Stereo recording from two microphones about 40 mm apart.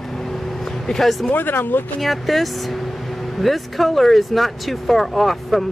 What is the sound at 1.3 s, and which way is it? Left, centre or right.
Speech, left.